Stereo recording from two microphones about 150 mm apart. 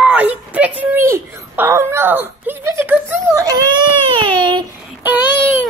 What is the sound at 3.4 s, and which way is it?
Speech, 25° right (ahead or behind).